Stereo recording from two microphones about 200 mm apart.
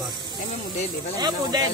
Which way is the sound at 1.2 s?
20° right (ahead or behind).